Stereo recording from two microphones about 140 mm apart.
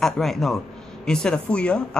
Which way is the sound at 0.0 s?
Centre (ahead or behind).